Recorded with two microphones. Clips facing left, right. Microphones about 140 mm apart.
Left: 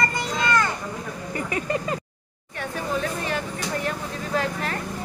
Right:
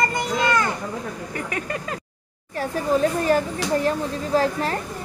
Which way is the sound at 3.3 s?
40° right (ahead or behind).